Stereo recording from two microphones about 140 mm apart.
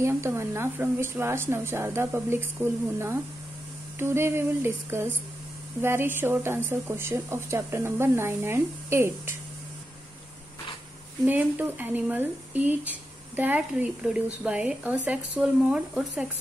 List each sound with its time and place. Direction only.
0.0 s speech: 20° right (ahead or behind)
11.2 s speech: 15° right (ahead or behind)